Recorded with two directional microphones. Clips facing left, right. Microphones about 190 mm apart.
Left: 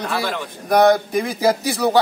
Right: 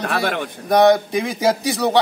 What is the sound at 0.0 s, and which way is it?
Speech, 60° right (ahead or behind).